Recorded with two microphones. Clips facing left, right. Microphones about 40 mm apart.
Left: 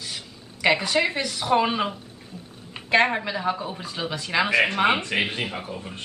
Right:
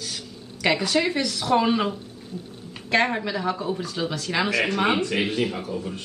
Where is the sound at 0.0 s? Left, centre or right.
Centre.